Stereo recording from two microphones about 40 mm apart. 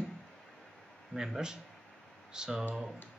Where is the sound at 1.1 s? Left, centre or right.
Centre.